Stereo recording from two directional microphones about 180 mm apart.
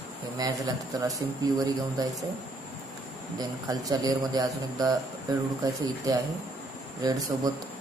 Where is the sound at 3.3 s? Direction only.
20° right (ahead or behind).